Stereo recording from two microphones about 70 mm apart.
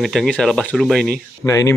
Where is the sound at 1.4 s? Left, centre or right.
Left.